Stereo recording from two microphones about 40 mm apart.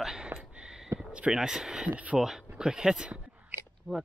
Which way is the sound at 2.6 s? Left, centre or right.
Centre.